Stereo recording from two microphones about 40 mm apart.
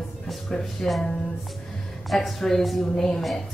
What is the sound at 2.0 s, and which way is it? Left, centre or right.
Speech, centre.